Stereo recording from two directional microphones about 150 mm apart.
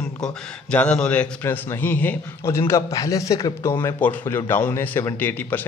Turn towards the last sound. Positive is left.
turn(degrees=10)  # may be behind; listen again after turning